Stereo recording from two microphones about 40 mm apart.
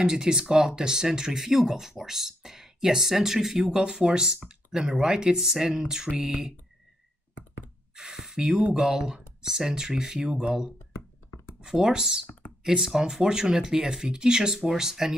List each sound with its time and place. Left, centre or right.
0.0 s speech: centre
7.9 s gasp: centre
8.7 s speech: centre
10.2 s speech: right
11.6 s speech: centre